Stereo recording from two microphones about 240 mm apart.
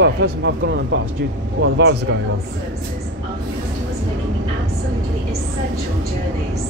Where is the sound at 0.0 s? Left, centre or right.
Right.